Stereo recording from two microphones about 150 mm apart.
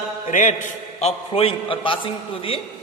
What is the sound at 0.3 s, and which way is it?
A man's voice, 55° left (ahead or behind).